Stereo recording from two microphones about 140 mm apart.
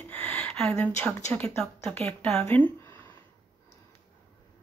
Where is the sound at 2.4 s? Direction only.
15° left (ahead or behind).